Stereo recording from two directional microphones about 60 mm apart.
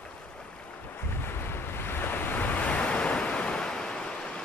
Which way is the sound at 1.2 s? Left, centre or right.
Left.